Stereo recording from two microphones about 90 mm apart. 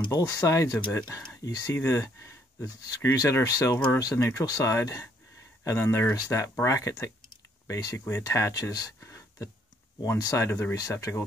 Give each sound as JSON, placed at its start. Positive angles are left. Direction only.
{"t": 0.1, "sound": "speech", "side_deg": 40}